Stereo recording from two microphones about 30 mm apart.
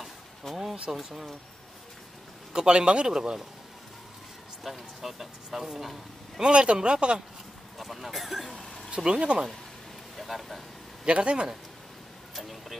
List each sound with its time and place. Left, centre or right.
0.0 s a sound: centre
0.9 s speech: centre
2.5 s speech: right
3.1 s speech: right
4.6 s speech: centre
6.4 s speech: right
7.8 s speech: centre
8.5 s a sound: left
8.9 s speech: right
10.1 s vehicle: centre
11.1 s speech: right
12.4 s speech: centre